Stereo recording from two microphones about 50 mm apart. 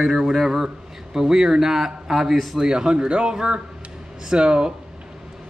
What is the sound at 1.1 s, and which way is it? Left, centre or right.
A man's voice, centre.